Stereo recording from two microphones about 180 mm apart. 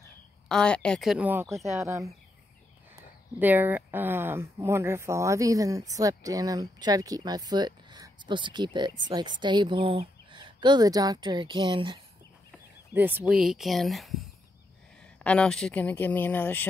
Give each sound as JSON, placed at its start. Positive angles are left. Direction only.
{"t": 0.5, "sound": "a woman's voice", "side_deg": 5}
{"t": 3.3, "sound": "speech", "side_deg": -10}
{"t": 12.9, "sound": "a woman's voice", "side_deg": -10}
{"t": 15.2, "sound": "speech", "side_deg": 5}